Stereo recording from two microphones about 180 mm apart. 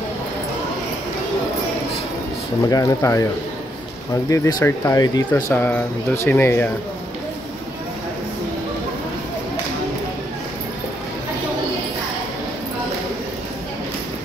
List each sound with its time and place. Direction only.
2.7 s speech: 20° left (ahead or behind)
4.3 s speech: 20° left (ahead or behind)